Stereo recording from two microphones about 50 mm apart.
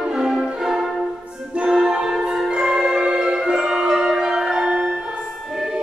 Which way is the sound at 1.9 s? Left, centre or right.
Centre.